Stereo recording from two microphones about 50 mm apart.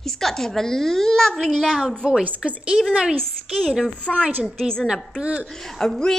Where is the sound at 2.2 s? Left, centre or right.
Right.